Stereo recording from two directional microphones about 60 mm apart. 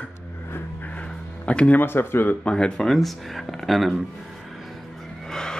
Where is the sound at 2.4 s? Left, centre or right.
Centre.